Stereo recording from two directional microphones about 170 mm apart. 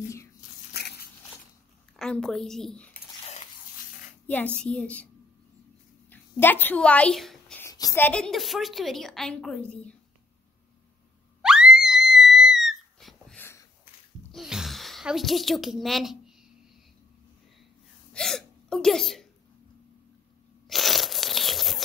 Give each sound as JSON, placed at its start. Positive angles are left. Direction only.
{"t": 0.7, "sound": "dog", "side_deg": 70}
{"t": 2.0, "sound": "a woman's voice", "side_deg": 5}
{"t": 4.6, "sound": "a child's voice", "side_deg": 5}
{"t": 6.0, "sound": "speech", "side_deg": 10}
{"t": 7.6, "sound": "a woman's voice", "side_deg": 20}
{"t": 11.4, "sound": "screaming", "side_deg": -5}
{"t": 13.4, "sound": "a sound", "side_deg": 15}
{"t": 14.3, "sound": "sigh", "side_deg": -5}
{"t": 18.1, "sound": "hiccup", "side_deg": 5}
{"t": 20.6, "sound": "crunch", "side_deg": 0}